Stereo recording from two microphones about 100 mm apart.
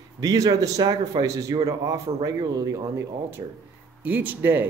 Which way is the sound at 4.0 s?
15° right (ahead or behind).